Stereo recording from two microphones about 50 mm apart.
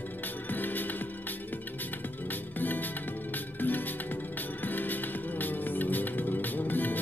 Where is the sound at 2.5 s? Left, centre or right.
Left.